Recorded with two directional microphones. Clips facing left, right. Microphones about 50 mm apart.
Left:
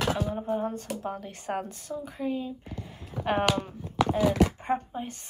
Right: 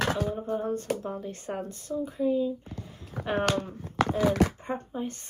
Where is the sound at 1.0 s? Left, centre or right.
Left.